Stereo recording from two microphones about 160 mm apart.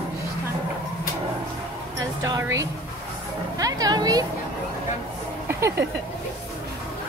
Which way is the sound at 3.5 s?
20° right (ahead or behind).